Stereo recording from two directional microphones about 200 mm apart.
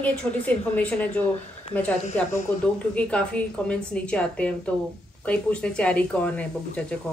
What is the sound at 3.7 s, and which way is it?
A woman's voice, 5° left (ahead or behind).